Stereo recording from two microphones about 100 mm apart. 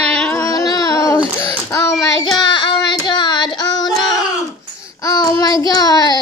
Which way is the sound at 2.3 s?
50° left (ahead or behind).